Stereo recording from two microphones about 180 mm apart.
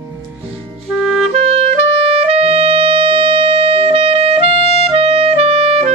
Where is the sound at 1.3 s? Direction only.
35° right (ahead or behind).